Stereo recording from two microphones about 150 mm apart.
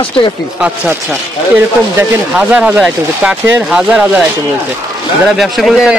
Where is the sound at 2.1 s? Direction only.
10° right (ahead or behind).